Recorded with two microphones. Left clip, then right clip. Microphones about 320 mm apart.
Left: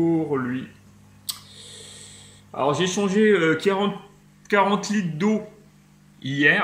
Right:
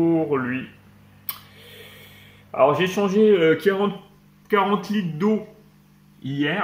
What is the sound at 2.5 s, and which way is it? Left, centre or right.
Speech, centre.